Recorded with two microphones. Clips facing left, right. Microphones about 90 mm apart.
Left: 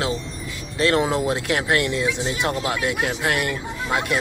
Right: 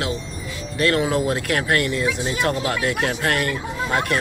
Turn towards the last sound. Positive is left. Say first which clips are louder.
# right 1 dB
turn(degrees=15)  # may be behind; listen again after turning